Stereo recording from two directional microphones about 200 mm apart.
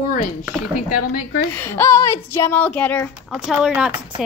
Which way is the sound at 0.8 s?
45° left (ahead or behind).